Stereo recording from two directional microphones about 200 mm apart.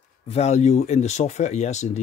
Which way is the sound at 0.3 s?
35° left (ahead or behind).